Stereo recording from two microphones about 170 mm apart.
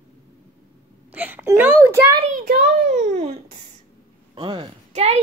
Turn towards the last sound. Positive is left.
turn(degrees=-35)  # may be behind; listen again after turning